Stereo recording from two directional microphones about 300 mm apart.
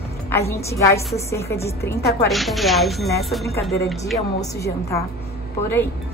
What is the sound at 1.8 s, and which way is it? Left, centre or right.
Speech, left.